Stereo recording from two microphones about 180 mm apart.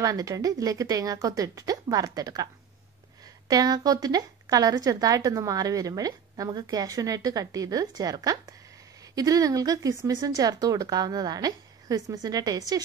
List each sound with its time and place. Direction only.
0.0 s a woman's voice: 20° right (ahead or behind)